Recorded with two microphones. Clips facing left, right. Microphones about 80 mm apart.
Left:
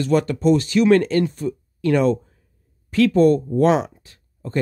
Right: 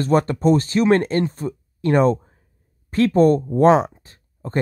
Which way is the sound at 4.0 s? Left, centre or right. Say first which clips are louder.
Right 2 dB; right.